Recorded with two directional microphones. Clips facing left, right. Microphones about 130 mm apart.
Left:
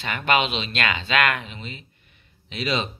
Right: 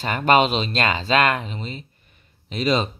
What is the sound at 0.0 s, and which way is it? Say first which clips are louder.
Speech: right 5 dB; 40° right (ahead or behind).